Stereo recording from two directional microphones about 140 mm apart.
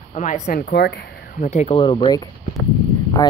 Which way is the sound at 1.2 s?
70° left (ahead or behind).